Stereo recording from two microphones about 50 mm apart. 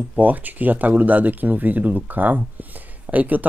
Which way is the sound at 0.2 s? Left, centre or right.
Right.